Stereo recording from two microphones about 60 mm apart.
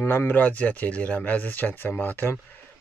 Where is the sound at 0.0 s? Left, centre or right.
Left.